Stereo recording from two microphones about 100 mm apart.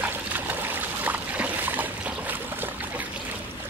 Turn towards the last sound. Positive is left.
turn(degrees=-20)  # may be behind; listen again after turning